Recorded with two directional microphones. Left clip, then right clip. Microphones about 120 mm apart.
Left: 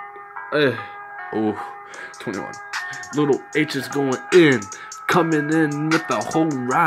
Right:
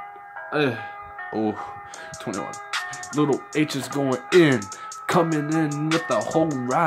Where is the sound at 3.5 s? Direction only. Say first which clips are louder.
Left 3 dB; 20° right (ahead or behind).